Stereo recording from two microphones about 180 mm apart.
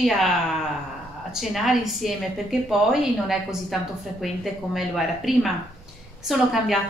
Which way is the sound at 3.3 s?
Centre (ahead or behind).